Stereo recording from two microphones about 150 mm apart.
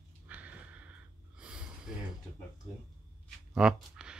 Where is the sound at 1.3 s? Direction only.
5° right (ahead or behind).